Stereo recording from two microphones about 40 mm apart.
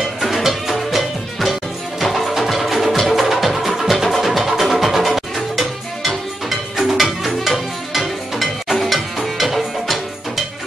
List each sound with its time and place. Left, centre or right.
0.2 s music: centre